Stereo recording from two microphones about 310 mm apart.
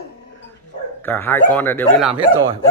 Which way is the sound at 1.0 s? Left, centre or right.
Centre.